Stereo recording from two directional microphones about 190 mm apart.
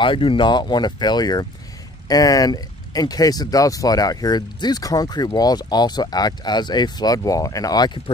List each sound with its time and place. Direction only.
0.0 s speech: 25° left (ahead or behind)